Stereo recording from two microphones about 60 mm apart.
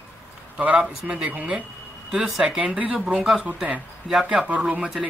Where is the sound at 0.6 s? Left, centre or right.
Centre.